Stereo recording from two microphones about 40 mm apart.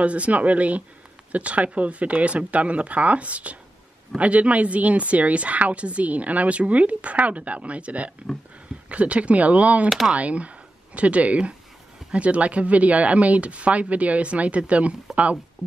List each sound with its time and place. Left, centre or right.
0.0 s speech: right
9.8 s speech: centre
10.1 s speech: right